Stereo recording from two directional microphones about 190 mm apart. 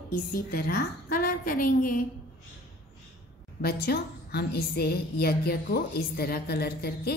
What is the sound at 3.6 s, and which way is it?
A woman's voice, 55° left (ahead or behind).